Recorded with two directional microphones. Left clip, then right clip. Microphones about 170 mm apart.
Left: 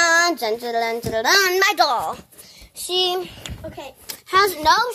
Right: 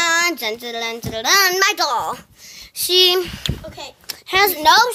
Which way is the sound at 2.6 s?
25° right (ahead or behind).